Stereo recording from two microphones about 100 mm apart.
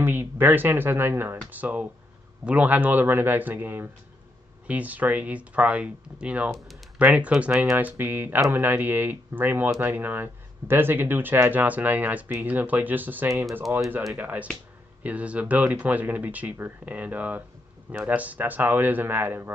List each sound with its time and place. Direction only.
0.0 s speech: 20° right (ahead or behind)